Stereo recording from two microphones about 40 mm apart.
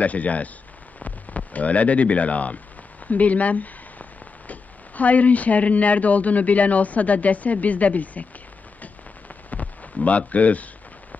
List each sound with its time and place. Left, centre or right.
0.0 s speech: left
10.0 s speech: left